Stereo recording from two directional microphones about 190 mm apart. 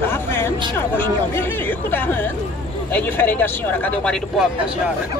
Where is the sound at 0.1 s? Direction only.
10° left (ahead or behind).